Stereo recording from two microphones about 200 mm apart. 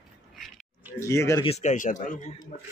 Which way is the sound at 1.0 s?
15° left (ahead or behind).